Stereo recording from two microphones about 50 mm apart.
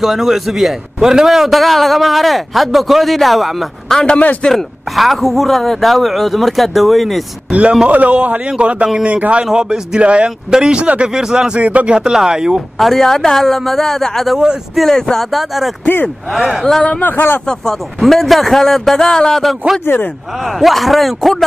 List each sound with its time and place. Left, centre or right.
0.0 s a man's voice: centre
7.9 s speech: right
11.6 s speech: right
11.9 s speech: centre
12.7 s a man's voice: centre
14.3 s speech: centre
14.8 s speech: centre
15.3 s a man's voice: centre
17.0 s speech: left
17.9 s a man's voice: centre
19.9 s speech: left
20.4 s a man's voice: centre